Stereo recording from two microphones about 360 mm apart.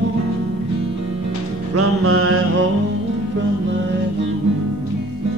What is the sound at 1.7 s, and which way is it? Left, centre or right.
Mantra, right.